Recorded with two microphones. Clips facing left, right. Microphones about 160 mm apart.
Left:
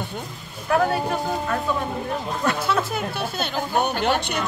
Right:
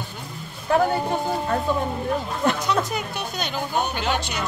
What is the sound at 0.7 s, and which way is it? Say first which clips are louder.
Speech: even; 25° right (ahead or behind).